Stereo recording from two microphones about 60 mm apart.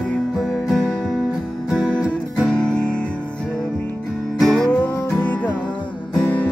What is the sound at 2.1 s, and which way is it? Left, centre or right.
Music, centre.